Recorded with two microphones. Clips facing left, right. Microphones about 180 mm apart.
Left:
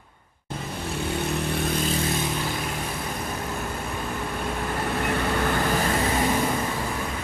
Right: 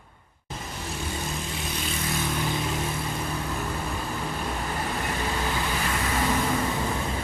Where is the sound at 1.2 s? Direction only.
60° left (ahead or behind).